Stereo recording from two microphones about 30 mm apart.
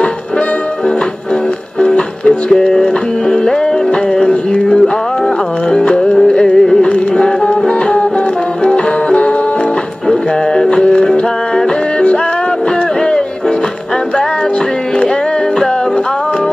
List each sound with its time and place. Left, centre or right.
1.8 s music: left
2.2 s music: left
4.6 s music: centre
5.7 s music: left
6.5 s music: centre
8.6 s music: left
10.0 s music: left